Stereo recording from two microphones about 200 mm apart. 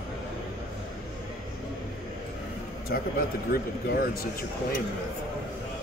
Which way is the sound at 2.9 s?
50° left (ahead or behind).